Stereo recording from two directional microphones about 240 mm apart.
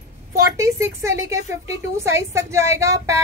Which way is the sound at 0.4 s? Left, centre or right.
Centre.